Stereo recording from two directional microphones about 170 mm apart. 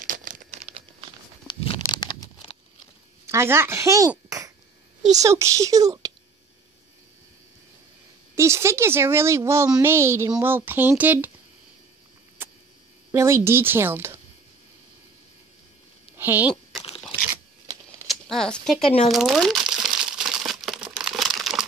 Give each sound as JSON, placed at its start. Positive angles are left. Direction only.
{"t": 0.0, "sound": "crumpling", "side_deg": -50}
{"t": 1.5, "sound": "a sound", "side_deg": 30}
{"t": 3.3, "sound": "speech", "side_deg": -15}
{"t": 5.2, "sound": "speech", "side_deg": -15}
{"t": 8.4, "sound": "speech", "side_deg": -15}
{"t": 13.1, "sound": "speech", "side_deg": -15}
{"t": 16.2, "sound": "a sound", "side_deg": -10}
{"t": 18.0, "sound": "a sound", "side_deg": 5}
{"t": 19.0, "sound": "crumpling", "side_deg": 0}